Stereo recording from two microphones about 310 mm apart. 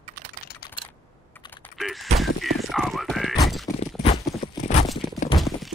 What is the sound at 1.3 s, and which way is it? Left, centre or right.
Typing, centre.